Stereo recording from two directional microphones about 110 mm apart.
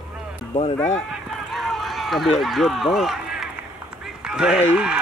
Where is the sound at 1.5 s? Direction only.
Centre (ahead or behind).